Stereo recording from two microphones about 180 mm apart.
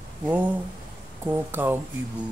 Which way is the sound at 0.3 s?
10° right (ahead or behind).